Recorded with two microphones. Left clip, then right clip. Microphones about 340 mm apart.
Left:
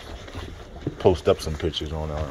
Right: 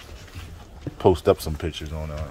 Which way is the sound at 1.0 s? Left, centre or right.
Centre.